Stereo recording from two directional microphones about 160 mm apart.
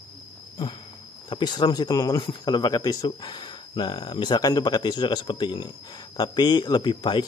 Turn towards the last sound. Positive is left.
turn(degrees=30)  # may be behind; listen again after turning